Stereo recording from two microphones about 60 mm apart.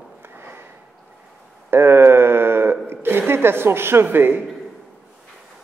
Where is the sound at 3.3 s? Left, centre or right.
Right.